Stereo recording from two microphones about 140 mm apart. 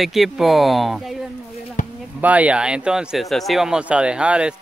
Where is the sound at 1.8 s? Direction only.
65° left (ahead or behind).